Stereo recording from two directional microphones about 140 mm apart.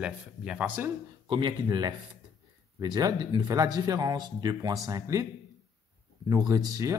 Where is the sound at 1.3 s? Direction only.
30° right (ahead or behind).